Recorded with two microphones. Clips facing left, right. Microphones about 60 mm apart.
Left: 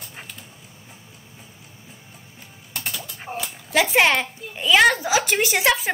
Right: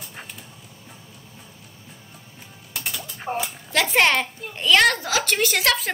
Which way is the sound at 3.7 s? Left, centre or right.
Centre.